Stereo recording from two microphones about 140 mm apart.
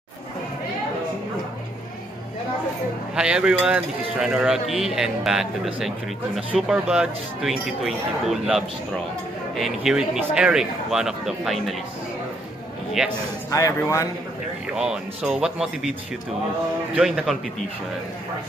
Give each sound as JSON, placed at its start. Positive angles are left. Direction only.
{"t": 3.2, "sound": "speech", "side_deg": -5}
{"t": 13.0, "sound": "speech", "side_deg": -5}
{"t": 13.5, "sound": "speech", "side_deg": 25}
{"t": 14.7, "sound": "speech", "side_deg": -5}
{"t": 16.9, "sound": "speech", "side_deg": -5}